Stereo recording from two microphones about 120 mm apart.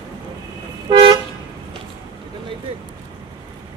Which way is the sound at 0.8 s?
40° right (ahead or behind).